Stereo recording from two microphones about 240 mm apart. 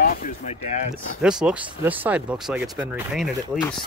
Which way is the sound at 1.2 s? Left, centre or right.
Centre.